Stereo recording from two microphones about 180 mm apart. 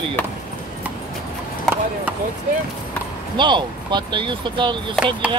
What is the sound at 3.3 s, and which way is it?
Speech, 25° right (ahead or behind).